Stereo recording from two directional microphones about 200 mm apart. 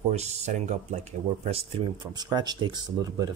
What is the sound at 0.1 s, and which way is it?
Speech, 35° right (ahead or behind).